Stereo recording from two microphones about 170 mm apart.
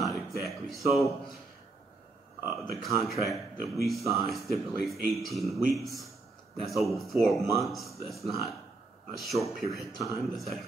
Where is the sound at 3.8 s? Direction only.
Centre (ahead or behind).